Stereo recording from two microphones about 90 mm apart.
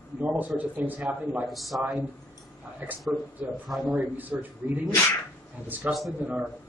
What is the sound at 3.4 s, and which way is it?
Speech, 20° right (ahead or behind).